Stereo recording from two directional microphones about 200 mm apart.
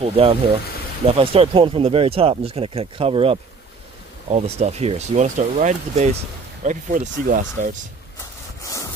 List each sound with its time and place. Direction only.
0.0 s speech: 30° right (ahead or behind)